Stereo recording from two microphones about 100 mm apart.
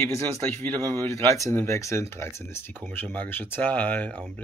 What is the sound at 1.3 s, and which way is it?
Speech, 30° left (ahead or behind).